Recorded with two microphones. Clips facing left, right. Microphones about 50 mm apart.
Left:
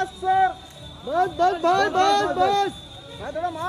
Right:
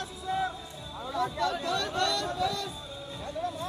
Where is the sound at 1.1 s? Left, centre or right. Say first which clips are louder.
Left 10 dB; left.